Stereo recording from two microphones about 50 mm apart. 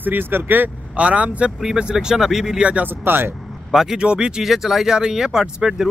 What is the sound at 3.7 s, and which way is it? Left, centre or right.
Speech, centre.